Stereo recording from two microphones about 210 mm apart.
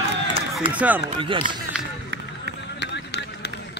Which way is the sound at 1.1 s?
25° right (ahead or behind).